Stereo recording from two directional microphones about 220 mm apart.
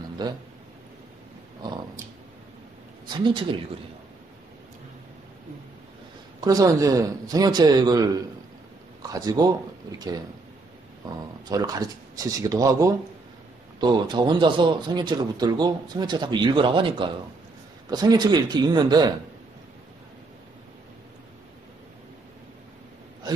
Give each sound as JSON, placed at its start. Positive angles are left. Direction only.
{"t": 0.2, "sound": "a man's voice", "side_deg": -20}
{"t": 3.1, "sound": "a man's voice", "side_deg": -20}
{"t": 6.4, "sound": "speech", "side_deg": -15}
{"t": 11.4, "sound": "a man's voice", "side_deg": -15}
{"t": 23.2, "sound": "gasp", "side_deg": -20}